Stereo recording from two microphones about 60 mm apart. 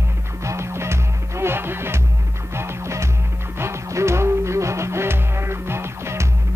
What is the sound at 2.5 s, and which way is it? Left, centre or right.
Music, right.